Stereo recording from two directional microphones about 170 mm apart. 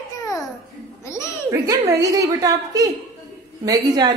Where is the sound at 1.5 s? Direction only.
20° right (ahead or behind).